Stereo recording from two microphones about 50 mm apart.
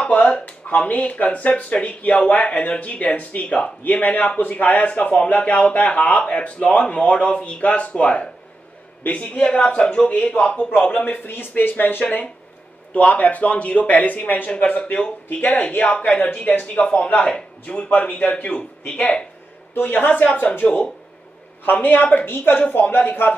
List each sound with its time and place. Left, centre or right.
0.0 s a sound: left
0.7 s a man's voice: left
14.5 s a man's voice: left
16.6 s a man's voice: left
19.7 s speech: left
20.6 s a man's voice: left
22.2 s a woman's voice: left